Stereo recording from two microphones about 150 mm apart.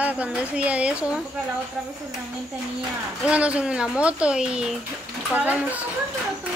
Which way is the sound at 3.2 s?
10° right (ahead or behind).